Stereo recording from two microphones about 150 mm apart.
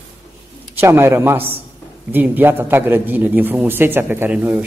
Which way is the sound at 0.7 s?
15° right (ahead or behind).